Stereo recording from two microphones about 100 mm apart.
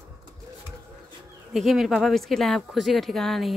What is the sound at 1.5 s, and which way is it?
Speech, centre (ahead or behind).